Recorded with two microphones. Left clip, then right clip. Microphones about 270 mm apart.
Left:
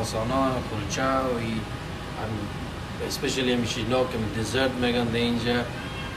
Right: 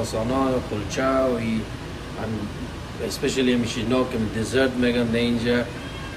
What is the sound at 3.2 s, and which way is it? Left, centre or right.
Speech, centre.